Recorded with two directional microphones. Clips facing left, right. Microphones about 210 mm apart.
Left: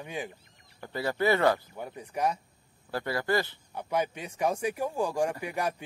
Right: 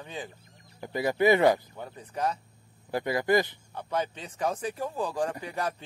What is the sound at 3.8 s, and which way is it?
Speech, 10° left (ahead or behind).